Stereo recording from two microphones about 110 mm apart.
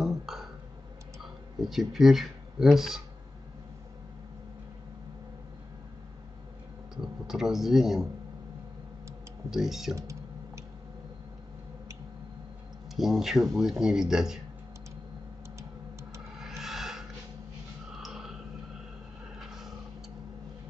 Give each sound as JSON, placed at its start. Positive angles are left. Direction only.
{"t": 0.3, "sound": "burping", "side_deg": -5}
{"t": 1.6, "sound": "speech", "side_deg": 0}
{"t": 7.2, "sound": "speech", "side_deg": -5}
{"t": 9.5, "sound": "speech", "side_deg": -5}
{"t": 9.9, "sound": "clicking", "side_deg": -30}
{"t": 12.9, "sound": "speech", "side_deg": 0}
{"t": 16.3, "sound": "a sound", "side_deg": -5}
{"t": 18.0, "sound": "a sound", "side_deg": -5}